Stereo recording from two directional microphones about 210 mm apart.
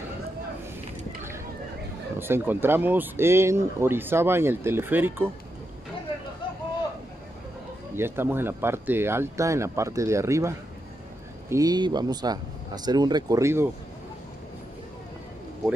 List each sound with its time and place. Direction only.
2.1 s speech: 10° right (ahead or behind)
7.9 s speech: 10° right (ahead or behind)